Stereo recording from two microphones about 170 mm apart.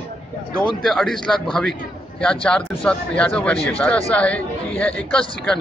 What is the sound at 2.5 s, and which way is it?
Speech, 5° left (ahead or behind).